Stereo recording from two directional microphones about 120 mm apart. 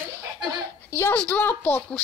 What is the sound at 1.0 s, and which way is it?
A woman's voice, 15° left (ahead or behind).